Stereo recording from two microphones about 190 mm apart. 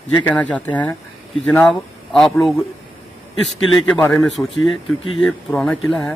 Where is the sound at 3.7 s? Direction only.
5° left (ahead or behind).